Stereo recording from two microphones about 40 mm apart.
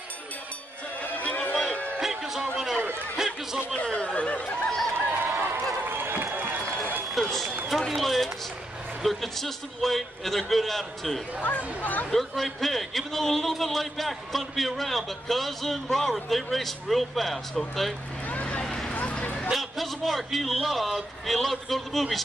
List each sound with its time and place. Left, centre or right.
1.2 s a sound: left
2.0 s music: centre
3.2 s chatter: centre
3.8 s chatter: left
4.6 s a sound: centre
5.1 s run: right
5.9 s a sound: right
7.2 s run: centre
7.9 s a man's voice: centre
11.4 s speech: left
12.1 s a man's voice: centre
18.3 s run: left
19.5 s a sound: centre
20.6 s a man's voice: centre